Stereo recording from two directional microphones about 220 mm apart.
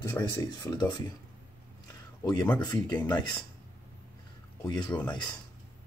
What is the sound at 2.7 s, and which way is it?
Speech, 15° left (ahead or behind).